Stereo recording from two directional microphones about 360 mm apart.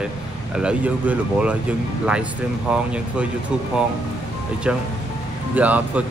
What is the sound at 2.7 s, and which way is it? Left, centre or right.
Speech, centre.